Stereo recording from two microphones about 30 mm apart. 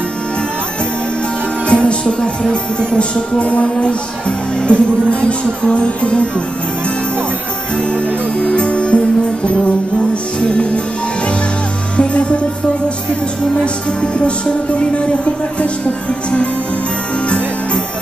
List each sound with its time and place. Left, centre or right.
1.7 s music: left
7.9 s music: left
12.0 s music: left
14.0 s music: left